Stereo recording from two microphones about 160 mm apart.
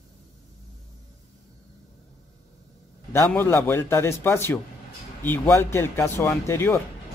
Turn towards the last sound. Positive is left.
turn(degrees=15)  # may be behind; listen again after turning